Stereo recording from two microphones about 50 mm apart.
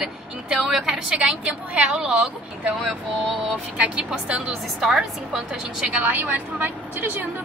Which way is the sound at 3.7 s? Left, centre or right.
Right.